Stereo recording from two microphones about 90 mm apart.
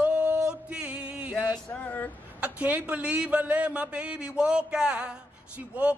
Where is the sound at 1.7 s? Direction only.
20° left (ahead or behind).